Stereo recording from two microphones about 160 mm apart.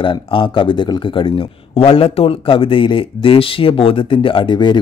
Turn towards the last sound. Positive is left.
turn(degrees=30)  # may be behind; listen again after turning